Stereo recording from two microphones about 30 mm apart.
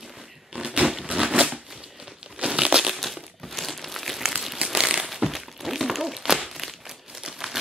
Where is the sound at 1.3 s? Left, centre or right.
Right.